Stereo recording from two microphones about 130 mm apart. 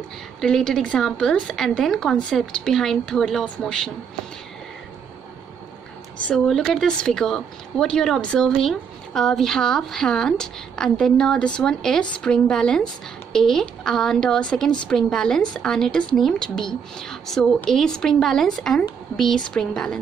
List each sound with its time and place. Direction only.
0.4 s speech: 5° left (ahead or behind)
6.2 s speech: 5° left (ahead or behind)